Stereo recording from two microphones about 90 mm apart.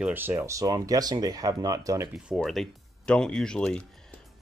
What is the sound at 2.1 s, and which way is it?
Speech, centre (ahead or behind).